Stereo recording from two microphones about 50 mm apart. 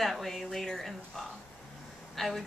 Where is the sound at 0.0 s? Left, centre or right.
Centre.